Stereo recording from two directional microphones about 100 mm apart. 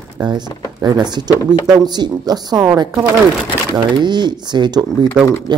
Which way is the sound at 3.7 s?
45° right (ahead or behind).